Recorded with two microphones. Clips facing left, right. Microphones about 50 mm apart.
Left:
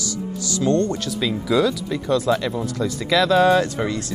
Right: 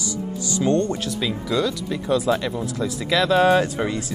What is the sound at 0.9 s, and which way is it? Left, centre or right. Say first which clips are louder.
Speech: left 2 dB; centre.